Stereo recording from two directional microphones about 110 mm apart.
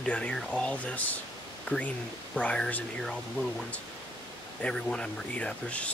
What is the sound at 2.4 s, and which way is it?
Speech, 10° left (ahead or behind).